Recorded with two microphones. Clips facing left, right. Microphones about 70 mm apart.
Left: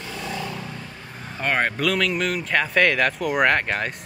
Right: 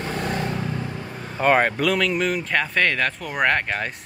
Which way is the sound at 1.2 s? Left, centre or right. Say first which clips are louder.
Right 5 dB; centre.